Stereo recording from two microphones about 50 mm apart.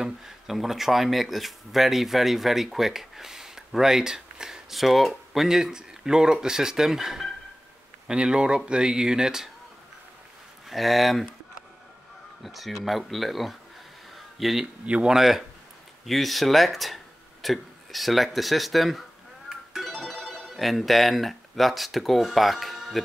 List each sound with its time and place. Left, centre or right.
0.0 s speech: centre
8.1 s speech: centre
10.7 s speech: centre
12.4 s speech: centre
14.1 s a sound: centre
15.0 s speech: centre
19.5 s music: centre